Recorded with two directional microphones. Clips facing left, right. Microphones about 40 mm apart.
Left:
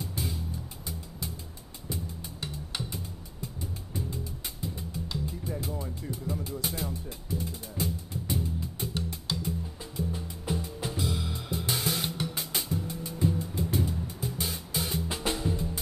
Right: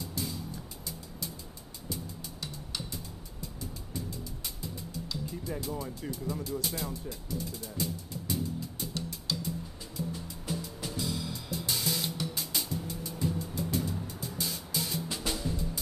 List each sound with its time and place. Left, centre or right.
0.2 s music: left
1.9 s music: left